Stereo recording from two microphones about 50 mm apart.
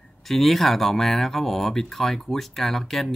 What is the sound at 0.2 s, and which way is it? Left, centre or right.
Speech, centre.